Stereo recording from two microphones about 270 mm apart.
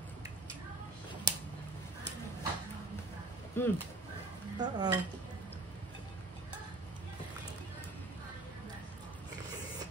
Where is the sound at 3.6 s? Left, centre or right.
Centre.